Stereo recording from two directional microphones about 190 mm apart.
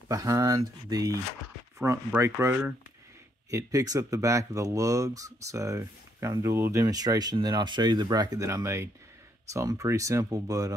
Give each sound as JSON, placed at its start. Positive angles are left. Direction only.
{"t": 0.1, "sound": "speech", "side_deg": -15}